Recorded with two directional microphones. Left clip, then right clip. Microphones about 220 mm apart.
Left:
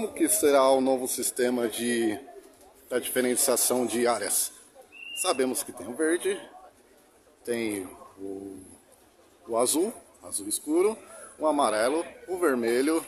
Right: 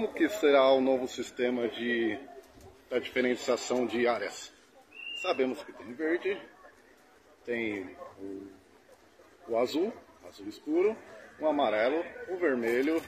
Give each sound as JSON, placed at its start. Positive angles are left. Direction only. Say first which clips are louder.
{"t": 0.0, "sound": "a man's voice", "louder": "left 2 dB", "side_deg": 20}
{"t": 7.4, "sound": "a man's voice", "louder": "left 3 dB", "side_deg": 25}
{"t": 9.5, "sound": "a man's voice", "louder": "left 3 dB", "side_deg": 30}